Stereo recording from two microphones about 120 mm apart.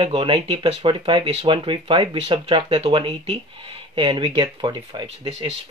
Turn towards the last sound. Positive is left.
turn(degrees=-35)  # may be behind; listen again after turning